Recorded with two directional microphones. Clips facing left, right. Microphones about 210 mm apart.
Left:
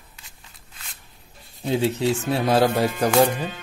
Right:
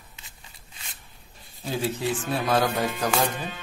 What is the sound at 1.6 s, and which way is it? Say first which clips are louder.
Speech: left 6 dB; 20° left (ahead or behind).